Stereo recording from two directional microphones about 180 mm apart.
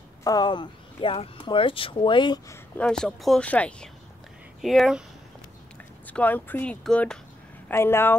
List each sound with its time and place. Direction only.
0.2 s speech: 20° left (ahead or behind)
2.8 s speech: 5° left (ahead or behind)
6.0 s speech: 10° left (ahead or behind)